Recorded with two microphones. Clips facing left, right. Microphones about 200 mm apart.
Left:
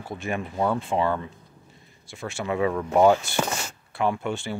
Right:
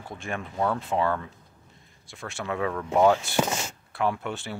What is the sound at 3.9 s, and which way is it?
Speech, centre (ahead or behind).